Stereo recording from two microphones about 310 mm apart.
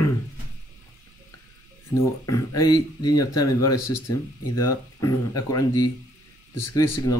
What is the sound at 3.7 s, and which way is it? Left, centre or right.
Speech, left.